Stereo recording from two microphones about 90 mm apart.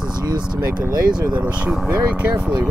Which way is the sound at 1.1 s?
10° right (ahead or behind).